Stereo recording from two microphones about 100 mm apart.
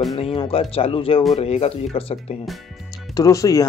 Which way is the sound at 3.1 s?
35° left (ahead or behind).